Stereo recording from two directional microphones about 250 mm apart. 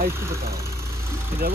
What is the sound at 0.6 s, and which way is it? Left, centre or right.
Vehicle, centre.